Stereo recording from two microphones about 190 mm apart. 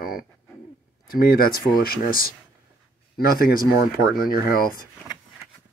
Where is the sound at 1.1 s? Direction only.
50° left (ahead or behind).